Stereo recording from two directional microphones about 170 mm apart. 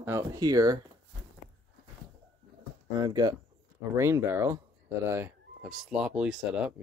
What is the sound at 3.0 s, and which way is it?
Speech, 25° right (ahead or behind).